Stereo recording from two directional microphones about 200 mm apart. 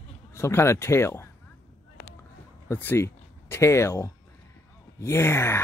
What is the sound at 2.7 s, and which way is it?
Speech, 10° left (ahead or behind).